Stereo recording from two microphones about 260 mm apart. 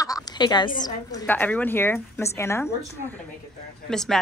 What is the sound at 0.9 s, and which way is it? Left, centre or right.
A woman's voice, centre.